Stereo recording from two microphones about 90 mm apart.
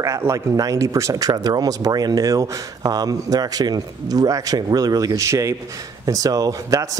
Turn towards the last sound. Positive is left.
turn(degrees=-40)  # may be behind; listen again after turning